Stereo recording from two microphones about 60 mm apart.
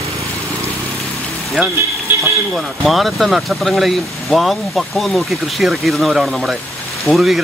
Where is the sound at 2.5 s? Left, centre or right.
Centre.